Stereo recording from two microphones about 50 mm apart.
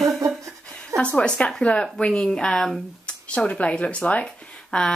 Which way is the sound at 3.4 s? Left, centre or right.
Left.